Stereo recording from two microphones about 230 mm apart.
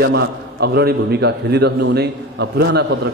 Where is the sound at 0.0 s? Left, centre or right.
Right.